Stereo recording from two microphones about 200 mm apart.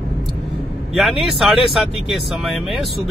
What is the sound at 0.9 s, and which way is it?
Speech, centre (ahead or behind).